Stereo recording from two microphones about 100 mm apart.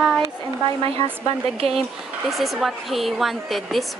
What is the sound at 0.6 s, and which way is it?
Speech, 65° right (ahead or behind).